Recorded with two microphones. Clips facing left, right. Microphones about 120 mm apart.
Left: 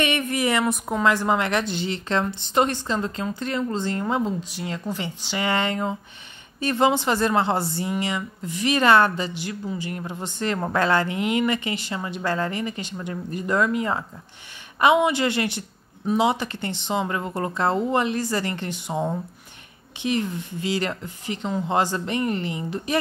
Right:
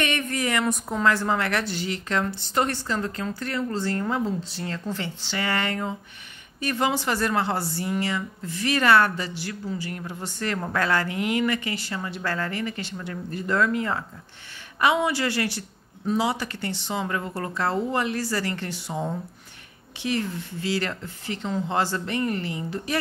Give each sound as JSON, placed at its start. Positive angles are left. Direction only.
{"t": 0.0, "sound": "speech", "side_deg": 15}